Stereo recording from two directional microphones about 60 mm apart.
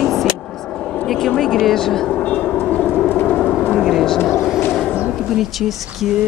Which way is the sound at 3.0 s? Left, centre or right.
Left.